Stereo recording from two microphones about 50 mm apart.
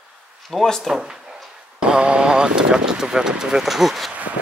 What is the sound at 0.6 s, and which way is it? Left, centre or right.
Speech, centre.